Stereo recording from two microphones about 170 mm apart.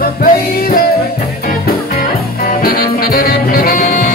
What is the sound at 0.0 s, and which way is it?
Music, 60° left (ahead or behind).